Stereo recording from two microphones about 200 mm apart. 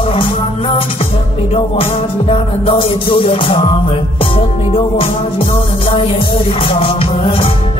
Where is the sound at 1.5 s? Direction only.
30° left (ahead or behind).